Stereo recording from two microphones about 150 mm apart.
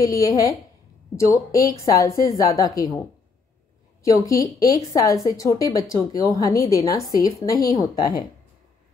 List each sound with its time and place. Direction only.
0.0 s a woman's voice: 25° left (ahead or behind)
4.0 s a woman's voice: 20° left (ahead or behind)